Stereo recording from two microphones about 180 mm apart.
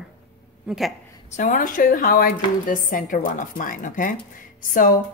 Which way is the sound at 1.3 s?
45° left (ahead or behind).